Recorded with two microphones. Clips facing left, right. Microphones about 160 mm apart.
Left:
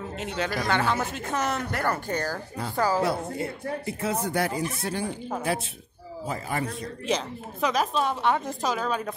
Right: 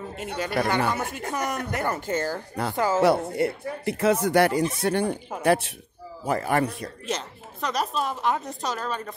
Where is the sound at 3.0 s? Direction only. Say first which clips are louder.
Right 6 dB; 70° right (ahead or behind).